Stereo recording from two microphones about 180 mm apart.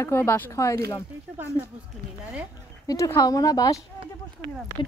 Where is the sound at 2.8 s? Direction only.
15° left (ahead or behind).